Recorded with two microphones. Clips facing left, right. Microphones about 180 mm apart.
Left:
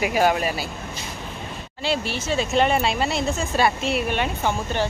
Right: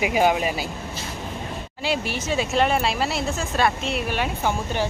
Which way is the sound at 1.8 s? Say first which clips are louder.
Left 1 dB; 15° right (ahead or behind).